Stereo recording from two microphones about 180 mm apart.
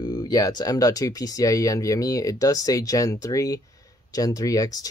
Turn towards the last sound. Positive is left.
turn(degrees=20)  # may be behind; listen again after turning